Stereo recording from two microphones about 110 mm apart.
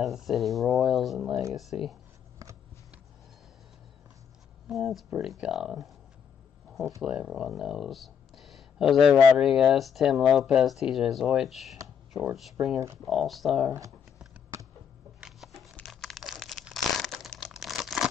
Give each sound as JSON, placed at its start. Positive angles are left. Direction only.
{"t": 0.0, "sound": "speech", "side_deg": 0}
{"t": 4.6, "sound": "speech", "side_deg": 0}
{"t": 7.0, "sound": "speech", "side_deg": -5}
{"t": 14.5, "sound": "a sound", "side_deg": -25}
{"t": 15.1, "sound": "a sound", "side_deg": -5}
{"t": 15.8, "sound": "crumpling", "side_deg": 0}